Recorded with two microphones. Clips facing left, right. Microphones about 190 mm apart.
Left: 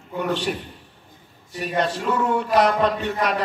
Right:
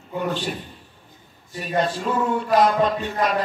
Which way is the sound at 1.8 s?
70° left (ahead or behind).